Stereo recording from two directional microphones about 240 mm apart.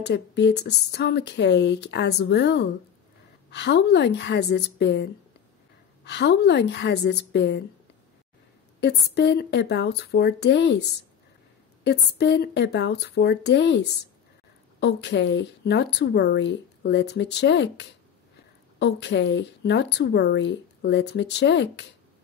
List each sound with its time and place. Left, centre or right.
0.0 s speech: left
8.8 s speech: left
11.8 s speech: left
14.8 s speech: left